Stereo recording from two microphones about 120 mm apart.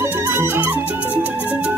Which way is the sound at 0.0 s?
20° right (ahead or behind).